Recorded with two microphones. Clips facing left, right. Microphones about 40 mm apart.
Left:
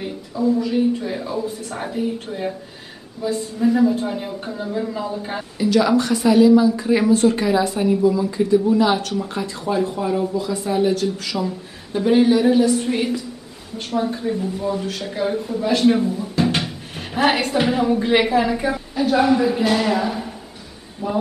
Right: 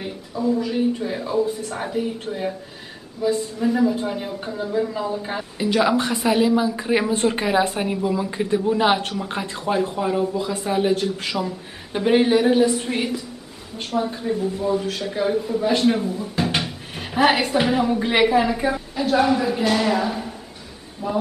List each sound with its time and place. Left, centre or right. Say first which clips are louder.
0.0 s speech: left 3 dB; centre
5.6 s speech: left 3 dB; right
9.8 s a man's voice: even; right; by 20.3 s centre